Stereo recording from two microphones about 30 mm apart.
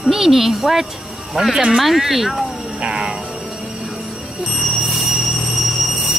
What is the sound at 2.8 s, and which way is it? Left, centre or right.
Music, right.